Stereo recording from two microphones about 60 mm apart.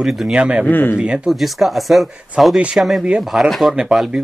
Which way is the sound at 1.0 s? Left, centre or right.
Centre.